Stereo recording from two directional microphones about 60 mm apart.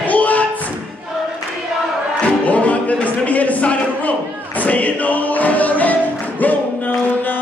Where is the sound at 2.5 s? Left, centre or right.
Left.